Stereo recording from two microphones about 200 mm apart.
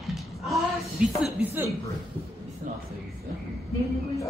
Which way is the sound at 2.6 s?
40° right (ahead or behind).